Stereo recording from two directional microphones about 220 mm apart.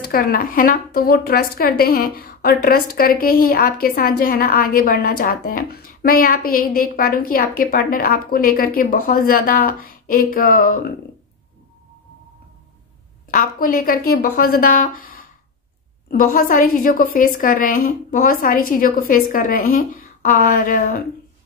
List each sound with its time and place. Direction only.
0.0 s a woman's voice: 40° left (ahead or behind)
13.3 s a woman's voice: 40° left (ahead or behind)